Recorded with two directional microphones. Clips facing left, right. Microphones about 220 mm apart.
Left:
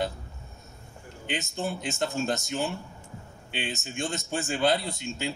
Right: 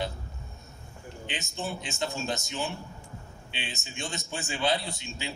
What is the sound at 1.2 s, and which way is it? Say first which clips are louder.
Speech: left 5 dB; 55° left (ahead or behind).